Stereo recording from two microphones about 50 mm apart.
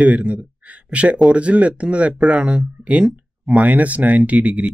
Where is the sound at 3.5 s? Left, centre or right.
Right.